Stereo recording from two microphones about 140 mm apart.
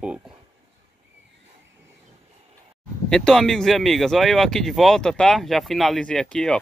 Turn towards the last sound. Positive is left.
turn(degrees=5)  # may be behind; listen again after turning